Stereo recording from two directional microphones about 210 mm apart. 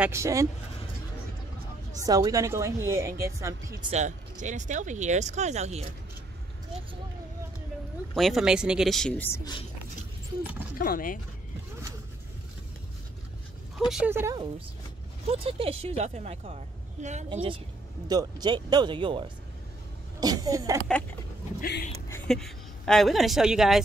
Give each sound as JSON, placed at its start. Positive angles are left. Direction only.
{"t": 0.0, "sound": "speech", "side_deg": -15}
{"t": 2.0, "sound": "speech", "side_deg": -15}
{"t": 3.9, "sound": "speech", "side_deg": -35}
{"t": 8.1, "sound": "speech", "side_deg": 0}
{"t": 10.8, "sound": "speech", "side_deg": 40}
{"t": 13.7, "sound": "speech", "side_deg": 0}
{"t": 18.0, "sound": "speech", "side_deg": -20}
{"t": 21.5, "sound": "speech", "side_deg": 50}
{"t": 22.1, "sound": "a woman's voice", "side_deg": 5}